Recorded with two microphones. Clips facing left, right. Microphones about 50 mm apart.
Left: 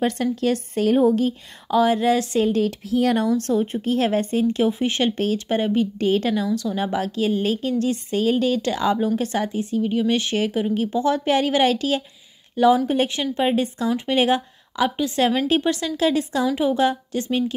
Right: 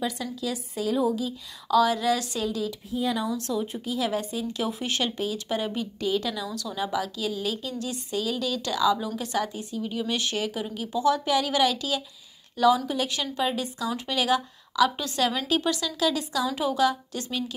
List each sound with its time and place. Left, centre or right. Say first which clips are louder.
0.0 s a woman's voice: left 9 dB; left
1.7 s speech: left 4 dB; left
2.9 s speech: left 7 dB; left
3.3 s speech: left 8 dB; left
4.6 s speech: left 8 dB; left
5.1 s speech: left 7 dB; left